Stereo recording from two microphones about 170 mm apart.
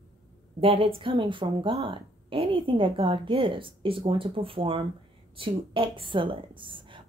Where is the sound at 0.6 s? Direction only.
35° right (ahead or behind).